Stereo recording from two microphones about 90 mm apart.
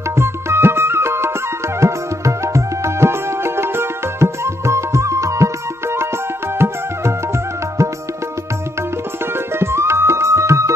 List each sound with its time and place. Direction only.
0.1 s music: 30° right (ahead or behind)
9.2 s music: 25° right (ahead or behind)